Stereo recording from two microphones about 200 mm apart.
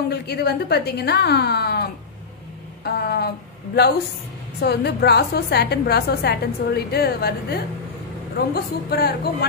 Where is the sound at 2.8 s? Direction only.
50° left (ahead or behind).